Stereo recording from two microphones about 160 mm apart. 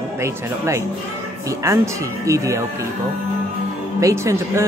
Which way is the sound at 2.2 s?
20° right (ahead or behind).